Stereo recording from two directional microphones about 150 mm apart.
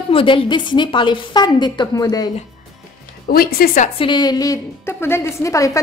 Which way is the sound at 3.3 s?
90° left.